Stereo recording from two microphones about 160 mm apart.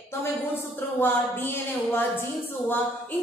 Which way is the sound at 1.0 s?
15° left (ahead or behind).